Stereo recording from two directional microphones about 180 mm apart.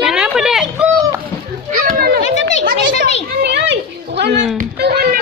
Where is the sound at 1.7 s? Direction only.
55° right (ahead or behind).